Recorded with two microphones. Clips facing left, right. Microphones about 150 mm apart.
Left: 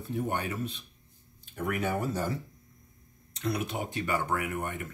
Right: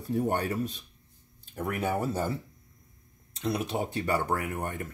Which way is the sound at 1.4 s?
35° right (ahead or behind).